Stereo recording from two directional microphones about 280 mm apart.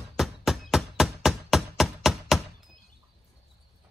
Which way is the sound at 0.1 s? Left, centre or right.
Centre.